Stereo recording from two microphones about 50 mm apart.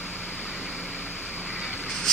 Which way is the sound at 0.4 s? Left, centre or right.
Centre.